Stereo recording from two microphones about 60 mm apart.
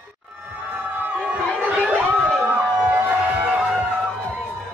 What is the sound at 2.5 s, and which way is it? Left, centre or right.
Music, right.